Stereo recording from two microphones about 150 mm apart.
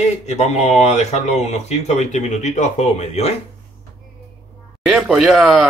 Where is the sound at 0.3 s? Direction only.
50° left (ahead or behind).